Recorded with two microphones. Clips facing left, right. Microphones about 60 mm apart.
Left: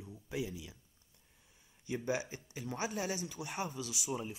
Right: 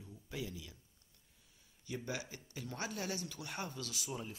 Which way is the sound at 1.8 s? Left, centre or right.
Left.